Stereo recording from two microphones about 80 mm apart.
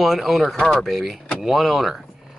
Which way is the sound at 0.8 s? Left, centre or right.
Centre.